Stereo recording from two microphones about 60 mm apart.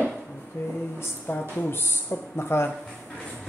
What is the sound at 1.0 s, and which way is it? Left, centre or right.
Speech, left.